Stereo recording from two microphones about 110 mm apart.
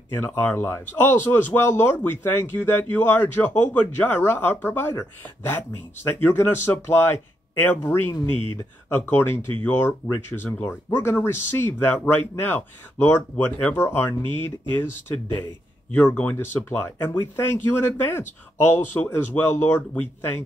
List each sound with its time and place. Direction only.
0.1 s speech: 20° left (ahead or behind)
15.9 s speech: 15° left (ahead or behind)